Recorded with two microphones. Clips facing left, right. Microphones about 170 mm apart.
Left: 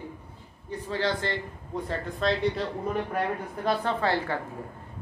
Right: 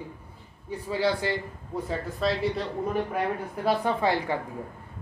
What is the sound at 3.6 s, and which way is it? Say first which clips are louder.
Speech: right 2 dB; 10° right (ahead or behind).